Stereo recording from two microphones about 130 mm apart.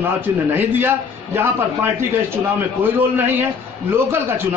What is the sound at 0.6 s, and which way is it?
A man's voice, 15° right (ahead or behind).